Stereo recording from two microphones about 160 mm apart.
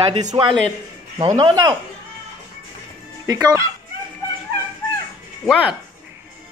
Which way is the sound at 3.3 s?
20° right (ahead or behind).